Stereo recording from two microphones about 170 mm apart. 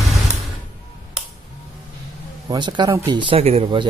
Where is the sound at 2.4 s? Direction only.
25° right (ahead or behind).